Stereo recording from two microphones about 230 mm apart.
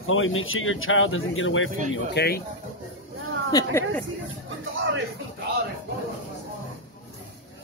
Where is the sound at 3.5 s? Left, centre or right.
Centre.